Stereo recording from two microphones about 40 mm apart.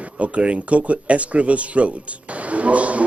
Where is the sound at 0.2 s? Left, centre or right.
Right.